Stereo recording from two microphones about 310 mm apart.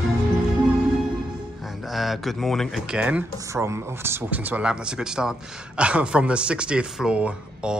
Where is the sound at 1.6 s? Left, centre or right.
Centre.